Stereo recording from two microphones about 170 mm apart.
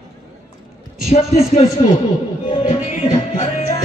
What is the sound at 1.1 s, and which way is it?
Speech, 40° left (ahead or behind).